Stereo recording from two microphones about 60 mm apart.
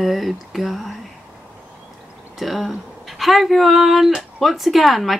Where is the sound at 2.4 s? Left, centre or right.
Centre.